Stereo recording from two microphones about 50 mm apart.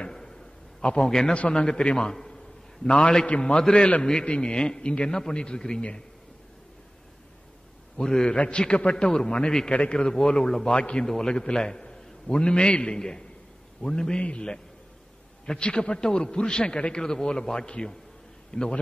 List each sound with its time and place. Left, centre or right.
0.0 s a sound: centre
1.3 s a man's voice: left
8.0 s a man's voice: centre
10.7 s a man's voice: left
11.1 s a man's voice: centre